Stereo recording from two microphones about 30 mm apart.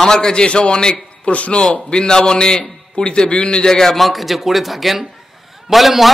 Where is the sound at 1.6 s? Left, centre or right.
Left.